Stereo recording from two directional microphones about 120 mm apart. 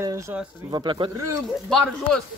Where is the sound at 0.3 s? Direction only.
15° right (ahead or behind).